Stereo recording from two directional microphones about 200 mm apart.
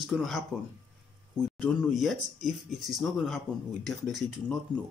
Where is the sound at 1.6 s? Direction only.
Centre (ahead or behind).